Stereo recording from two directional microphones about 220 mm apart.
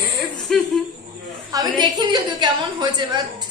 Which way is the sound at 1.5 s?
15° right (ahead or behind).